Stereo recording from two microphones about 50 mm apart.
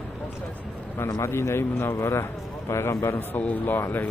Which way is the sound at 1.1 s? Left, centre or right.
Left.